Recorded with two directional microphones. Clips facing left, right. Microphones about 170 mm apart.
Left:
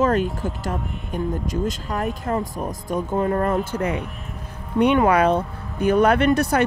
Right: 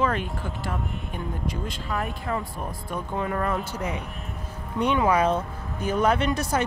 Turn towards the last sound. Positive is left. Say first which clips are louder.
# left 7 dB
turn(degrees=60)  # may be behind; listen again after turning